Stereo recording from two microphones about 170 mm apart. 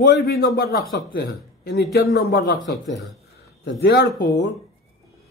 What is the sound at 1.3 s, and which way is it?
Speech, 70° left (ahead or behind).